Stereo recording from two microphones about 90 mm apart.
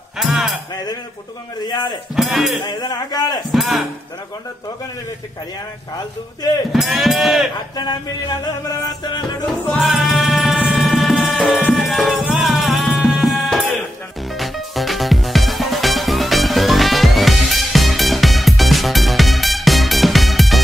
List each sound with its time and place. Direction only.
0.2 s music: centre (ahead or behind)
1.7 s speech: 55° left (ahead or behind)
2.1 s speech: centre (ahead or behind)
2.6 s music: 50° left (ahead or behind)
3.5 s speech: centre (ahead or behind)
6.7 s speech: centre (ahead or behind)
7.7 s music: 50° left (ahead or behind)
9.7 s music: centre (ahead or behind)